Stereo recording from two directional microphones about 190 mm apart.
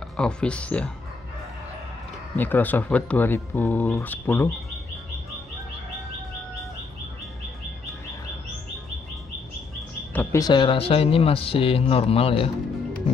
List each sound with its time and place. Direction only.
0.2 s speech: 5° left (ahead or behind)
2.3 s speech: 10° left (ahead or behind)
10.1 s speech: 15° left (ahead or behind)